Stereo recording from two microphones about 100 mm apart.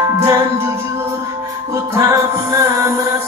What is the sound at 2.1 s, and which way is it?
Music, 30° right (ahead or behind).